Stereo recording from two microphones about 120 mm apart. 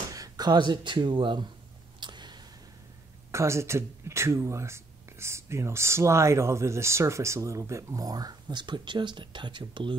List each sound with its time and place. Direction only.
0.1 s speech: 30° right (ahead or behind)
2.0 s a sound: 40° right (ahead or behind)
3.3 s speech: 25° right (ahead or behind); by 9.9 s 40° right (ahead or behind)